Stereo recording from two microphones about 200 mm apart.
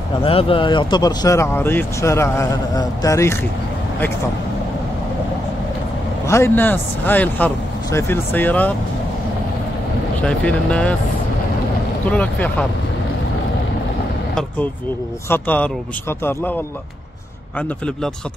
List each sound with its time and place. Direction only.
0.2 s speech: 25° left (ahead or behind)
6.2 s speech: 15° left (ahead or behind)
10.2 s speech: 5° left (ahead or behind)
12.1 s speech: 5° left (ahead or behind)
15.2 s speech: 10° left (ahead or behind)
17.6 s speech: 5° left (ahead or behind)